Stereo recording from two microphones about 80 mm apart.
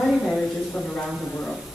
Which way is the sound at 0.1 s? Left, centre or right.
Centre.